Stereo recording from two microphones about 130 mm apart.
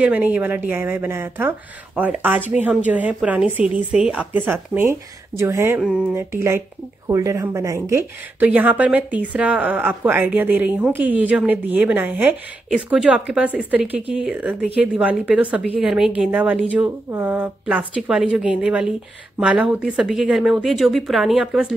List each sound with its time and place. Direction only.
0.0 s speech: 10° right (ahead or behind)
5.8 s speech: 10° right (ahead or behind)
6.1 s speech: 20° right (ahead or behind)
8.4 s a woman's voice: 10° right (ahead or behind)